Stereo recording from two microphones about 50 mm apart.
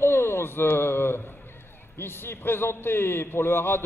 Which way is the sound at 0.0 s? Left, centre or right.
Left.